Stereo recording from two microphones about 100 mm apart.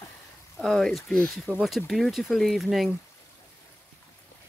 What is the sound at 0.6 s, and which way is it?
Speech, centre (ahead or behind).